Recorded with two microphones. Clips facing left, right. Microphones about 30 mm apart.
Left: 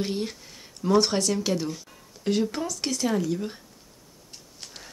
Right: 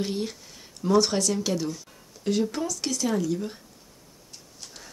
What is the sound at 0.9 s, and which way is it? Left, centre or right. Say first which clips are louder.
Speech: even; centre.